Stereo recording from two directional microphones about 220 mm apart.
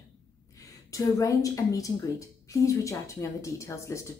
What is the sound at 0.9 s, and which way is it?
A woman's voice, 15° left (ahead or behind).